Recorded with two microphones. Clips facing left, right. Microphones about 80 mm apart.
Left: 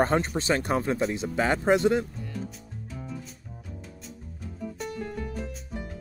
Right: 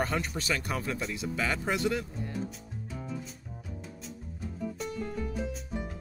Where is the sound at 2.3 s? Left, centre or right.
Centre.